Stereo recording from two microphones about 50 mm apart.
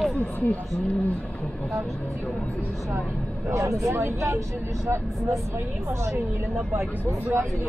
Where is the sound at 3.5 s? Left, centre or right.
Right.